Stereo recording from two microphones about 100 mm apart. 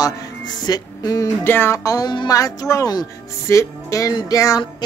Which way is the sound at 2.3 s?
35° left (ahead or behind).